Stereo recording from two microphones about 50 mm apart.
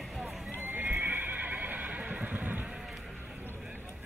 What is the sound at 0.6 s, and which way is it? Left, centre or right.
Horse, right.